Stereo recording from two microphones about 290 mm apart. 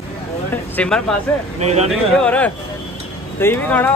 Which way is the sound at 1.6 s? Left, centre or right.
Right.